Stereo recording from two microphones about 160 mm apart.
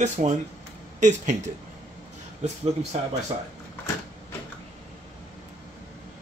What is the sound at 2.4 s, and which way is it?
Speech, 45° right (ahead or behind).